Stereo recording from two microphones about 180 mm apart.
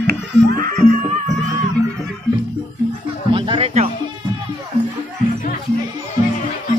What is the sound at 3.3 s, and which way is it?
Music, 30° right (ahead or behind).